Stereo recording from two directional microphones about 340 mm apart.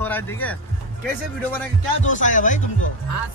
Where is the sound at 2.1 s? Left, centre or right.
Left.